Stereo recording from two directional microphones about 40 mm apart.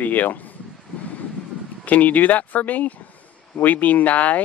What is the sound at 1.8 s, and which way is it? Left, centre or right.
Speech, left.